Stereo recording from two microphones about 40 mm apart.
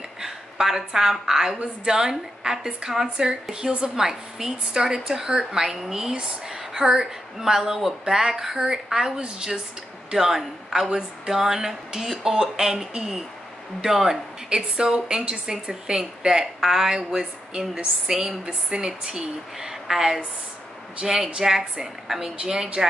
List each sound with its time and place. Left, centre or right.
0.2 s a woman's voice: centre
14.5 s speech: right
17.1 s speech: right
22.4 s speech: centre